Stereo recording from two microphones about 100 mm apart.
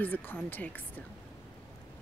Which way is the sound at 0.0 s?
20° left (ahead or behind).